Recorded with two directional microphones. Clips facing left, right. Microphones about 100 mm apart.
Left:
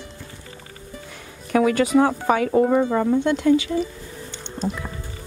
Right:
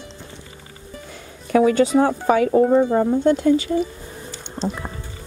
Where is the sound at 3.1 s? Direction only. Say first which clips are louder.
Right 1 dB; 40° right (ahead or behind).